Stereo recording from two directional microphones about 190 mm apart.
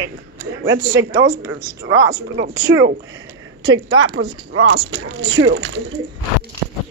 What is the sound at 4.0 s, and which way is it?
Speech, 90° right.